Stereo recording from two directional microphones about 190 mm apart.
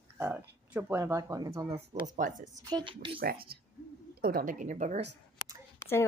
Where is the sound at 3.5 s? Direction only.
55° right (ahead or behind); by 5.1 s 35° right (ahead or behind).